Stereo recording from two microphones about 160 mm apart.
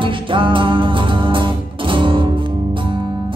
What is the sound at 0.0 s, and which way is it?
Music, 30° right (ahead or behind).